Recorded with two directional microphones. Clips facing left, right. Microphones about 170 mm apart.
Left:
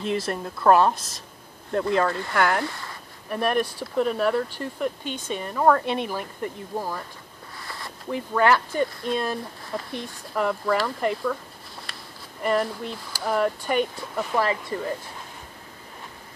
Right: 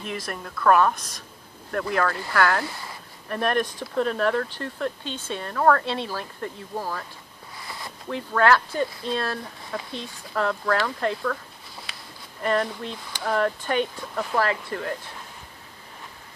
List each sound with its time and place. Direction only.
0.0 s a woman's voice: 30° left (ahead or behind)
3.3 s speech: 5° left (ahead or behind)
7.6 s a sound: centre (ahead or behind)
8.1 s speech: 15° left (ahead or behind)